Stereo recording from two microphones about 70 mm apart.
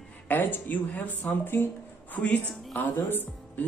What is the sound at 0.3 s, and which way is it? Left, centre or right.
Speech, left.